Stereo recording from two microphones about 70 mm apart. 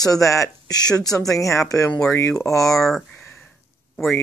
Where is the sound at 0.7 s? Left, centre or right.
Left.